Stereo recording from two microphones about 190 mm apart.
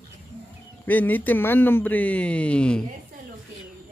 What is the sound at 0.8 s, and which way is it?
Speech, 10° left (ahead or behind).